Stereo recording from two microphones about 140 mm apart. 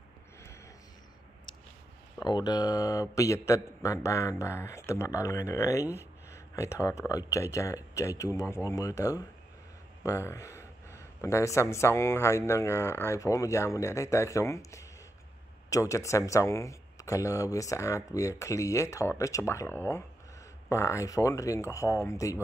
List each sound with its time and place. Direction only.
2.1 s speech: 30° left (ahead or behind)